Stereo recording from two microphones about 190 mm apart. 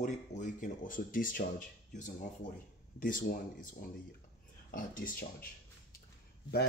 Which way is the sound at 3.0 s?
45° left (ahead or behind).